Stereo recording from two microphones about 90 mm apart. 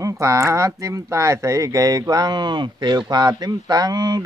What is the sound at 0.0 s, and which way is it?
Speech, 35° right (ahead or behind).